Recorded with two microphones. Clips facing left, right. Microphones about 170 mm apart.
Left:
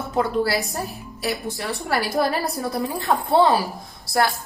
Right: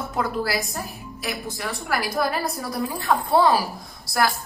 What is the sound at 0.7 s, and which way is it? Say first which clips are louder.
A woman's voice: left 3 dB; 35° left (ahead or behind).